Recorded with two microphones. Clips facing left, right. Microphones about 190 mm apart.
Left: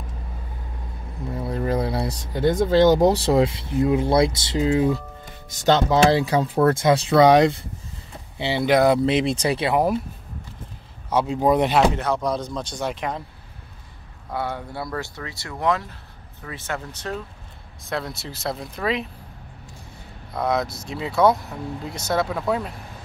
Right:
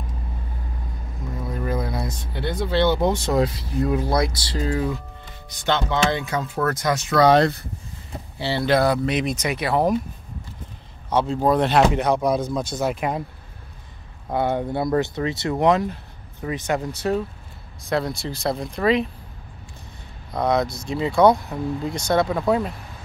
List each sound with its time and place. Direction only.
1.4 s speech: 30° left (ahead or behind)
5.6 s speech: 40° left (ahead or behind)
7.2 s speech: 15° left (ahead or behind)
9.7 s speech: 10° left (ahead or behind)
11.1 s speech: 10° left (ahead or behind)
11.9 s speech: 15° right (ahead or behind)
14.3 s speech: 20° right (ahead or behind)
17.8 s speech: centre (ahead or behind)
20.3 s speech: centre (ahead or behind)